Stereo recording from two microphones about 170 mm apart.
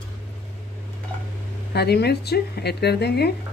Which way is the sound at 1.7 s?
75° left (ahead or behind).